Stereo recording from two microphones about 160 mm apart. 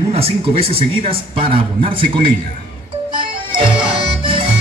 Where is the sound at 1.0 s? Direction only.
35° right (ahead or behind).